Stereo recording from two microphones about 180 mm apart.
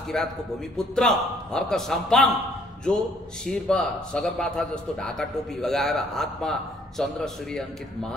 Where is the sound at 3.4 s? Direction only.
5° left (ahead or behind).